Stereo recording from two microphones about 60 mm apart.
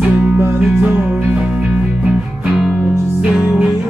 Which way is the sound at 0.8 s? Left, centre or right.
Right.